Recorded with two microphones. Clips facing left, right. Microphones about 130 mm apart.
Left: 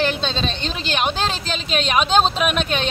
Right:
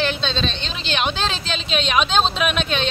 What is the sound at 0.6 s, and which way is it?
Speech, 45° left (ahead or behind).